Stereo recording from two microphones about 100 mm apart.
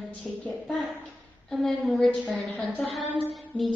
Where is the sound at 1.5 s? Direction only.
Centre (ahead or behind).